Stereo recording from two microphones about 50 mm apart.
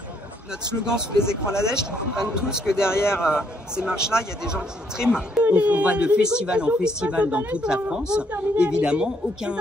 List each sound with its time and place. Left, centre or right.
0.8 s a man's voice: centre
2.9 s a man's voice: left
3.2 s a man's voice: centre
5.4 s a man's voice: right